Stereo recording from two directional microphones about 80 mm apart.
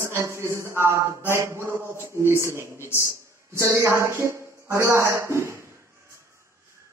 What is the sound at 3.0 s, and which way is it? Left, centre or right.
Speech, right.